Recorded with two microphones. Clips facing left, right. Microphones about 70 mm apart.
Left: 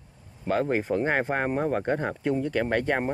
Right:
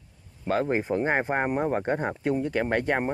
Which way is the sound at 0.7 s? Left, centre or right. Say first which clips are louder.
Even; centre.